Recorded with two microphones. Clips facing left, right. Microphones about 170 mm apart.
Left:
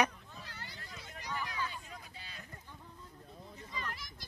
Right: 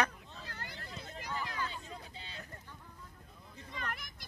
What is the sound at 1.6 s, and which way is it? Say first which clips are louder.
Vehicle: right 1 dB; 25° right (ahead or behind).